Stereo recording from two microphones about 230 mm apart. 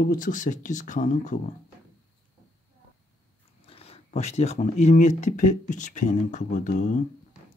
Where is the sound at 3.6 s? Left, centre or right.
Left.